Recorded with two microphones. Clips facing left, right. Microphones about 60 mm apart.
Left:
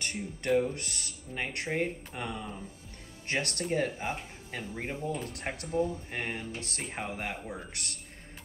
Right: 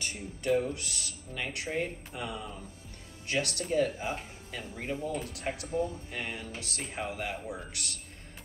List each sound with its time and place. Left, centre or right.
0.0 s speech: left
3.3 s speech: left